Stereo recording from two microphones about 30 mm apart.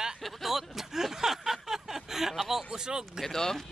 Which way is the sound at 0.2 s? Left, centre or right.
Centre.